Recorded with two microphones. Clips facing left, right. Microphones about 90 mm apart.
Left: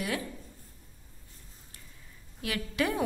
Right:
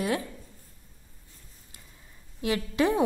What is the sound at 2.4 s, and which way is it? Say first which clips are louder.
Speech: right 5 dB; 25° right (ahead or behind).